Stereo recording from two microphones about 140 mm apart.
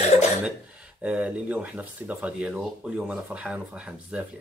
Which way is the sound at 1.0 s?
10° right (ahead or behind).